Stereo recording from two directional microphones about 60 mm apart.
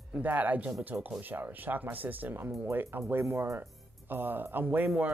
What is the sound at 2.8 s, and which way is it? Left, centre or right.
Speech, right.